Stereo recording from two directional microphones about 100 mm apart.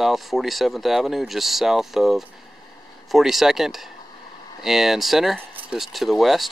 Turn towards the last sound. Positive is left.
turn(degrees=0)  # may be behind; listen again after turning